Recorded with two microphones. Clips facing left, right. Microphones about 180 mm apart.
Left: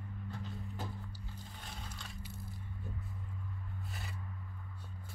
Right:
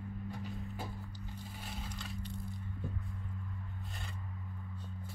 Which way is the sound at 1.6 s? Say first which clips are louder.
Right 5 dB; 5° right (ahead or behind).